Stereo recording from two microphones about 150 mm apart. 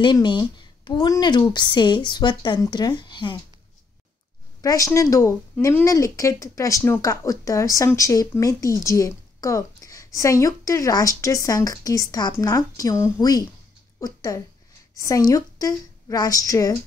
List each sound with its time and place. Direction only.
0.0 s a woman's voice: 30° left (ahead or behind)
4.6 s a woman's voice: 25° left (ahead or behind)